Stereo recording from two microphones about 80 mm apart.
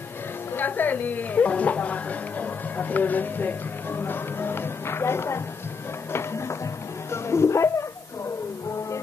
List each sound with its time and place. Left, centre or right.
0.6 s a woman's voice: left
6.1 s music: left